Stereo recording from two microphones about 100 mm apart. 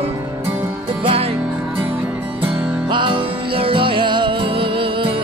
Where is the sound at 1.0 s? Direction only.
65° right (ahead or behind).